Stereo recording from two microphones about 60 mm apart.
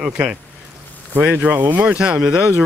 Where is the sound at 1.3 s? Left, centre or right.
Right.